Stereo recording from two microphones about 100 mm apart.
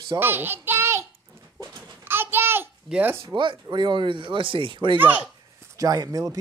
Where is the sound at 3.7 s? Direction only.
50° right (ahead or behind).